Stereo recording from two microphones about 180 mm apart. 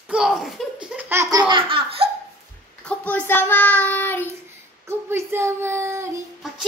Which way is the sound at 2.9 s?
10° left (ahead or behind).